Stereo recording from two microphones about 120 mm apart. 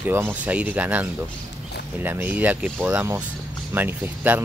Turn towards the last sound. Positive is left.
turn(degrees=-15)  # may be behind; listen again after turning